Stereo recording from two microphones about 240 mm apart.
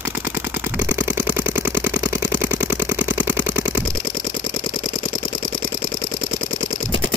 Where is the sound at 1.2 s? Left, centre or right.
Centre.